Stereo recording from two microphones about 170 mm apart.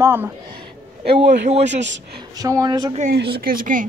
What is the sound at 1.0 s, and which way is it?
Speech, 90° right.